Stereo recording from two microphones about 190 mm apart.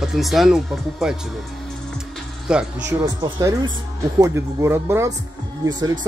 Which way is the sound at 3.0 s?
15° right (ahead or behind).